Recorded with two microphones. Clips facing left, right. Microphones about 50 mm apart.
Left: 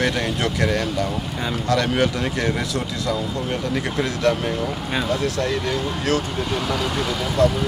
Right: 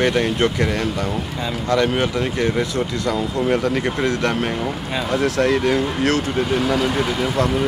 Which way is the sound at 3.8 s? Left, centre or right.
Right.